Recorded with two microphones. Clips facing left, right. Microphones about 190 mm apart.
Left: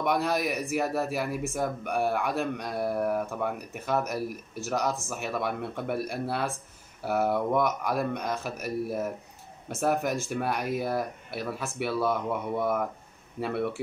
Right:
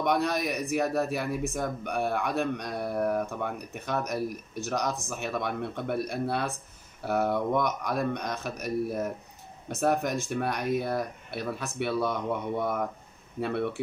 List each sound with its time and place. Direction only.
0.0 s a man's voice: 5° left (ahead or behind)